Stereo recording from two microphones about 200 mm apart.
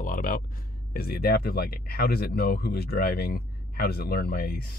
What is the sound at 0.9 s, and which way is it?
Speech, 50° left (ahead or behind).